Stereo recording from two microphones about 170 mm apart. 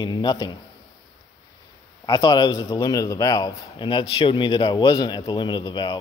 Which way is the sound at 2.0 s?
25° left (ahead or behind).